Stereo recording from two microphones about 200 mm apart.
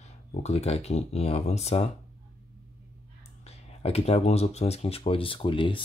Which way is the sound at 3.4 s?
30° left (ahead or behind).